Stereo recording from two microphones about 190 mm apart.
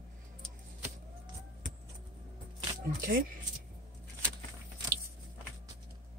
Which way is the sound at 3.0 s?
50° right (ahead or behind).